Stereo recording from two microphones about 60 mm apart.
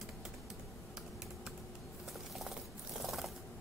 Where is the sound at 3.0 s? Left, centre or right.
Centre.